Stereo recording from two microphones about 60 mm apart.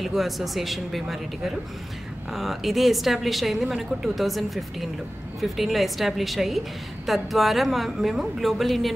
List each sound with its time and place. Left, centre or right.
0.0 s a woman's voice: centre